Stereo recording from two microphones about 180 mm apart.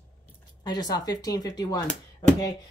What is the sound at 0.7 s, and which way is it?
A woman's voice, 20° left (ahead or behind).